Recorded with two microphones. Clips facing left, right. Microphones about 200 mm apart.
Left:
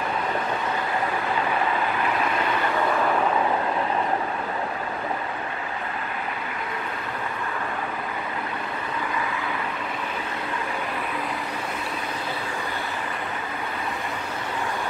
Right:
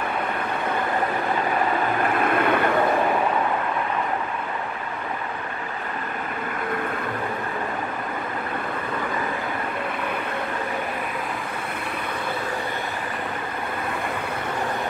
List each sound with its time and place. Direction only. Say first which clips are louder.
2.0 s vehicle: right 4 dB; 55° right (ahead or behind)